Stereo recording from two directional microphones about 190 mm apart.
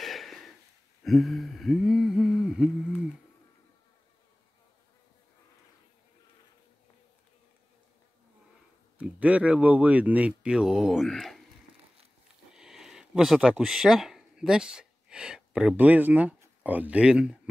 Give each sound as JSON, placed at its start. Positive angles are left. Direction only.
{"t": 0.0, "sound": "a sound", "side_deg": 0}
{"t": 1.0, "sound": "speech", "side_deg": 0}
{"t": 8.9, "sound": "speech", "side_deg": -5}
{"t": 12.5, "sound": "speech", "side_deg": 0}